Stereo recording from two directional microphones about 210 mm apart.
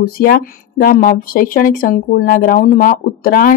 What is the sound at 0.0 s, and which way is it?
A woman's voice, 45° left (ahead or behind).